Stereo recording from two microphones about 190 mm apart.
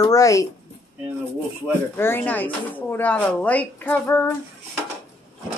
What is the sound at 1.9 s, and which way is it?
Speech, 10° left (ahead or behind).